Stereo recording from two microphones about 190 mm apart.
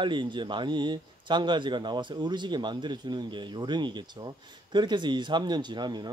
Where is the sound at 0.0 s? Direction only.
25° right (ahead or behind).